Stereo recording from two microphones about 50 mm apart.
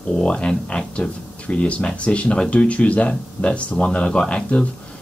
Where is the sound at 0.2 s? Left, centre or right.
Left.